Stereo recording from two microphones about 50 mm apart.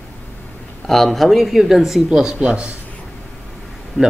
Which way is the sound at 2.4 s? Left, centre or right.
Right.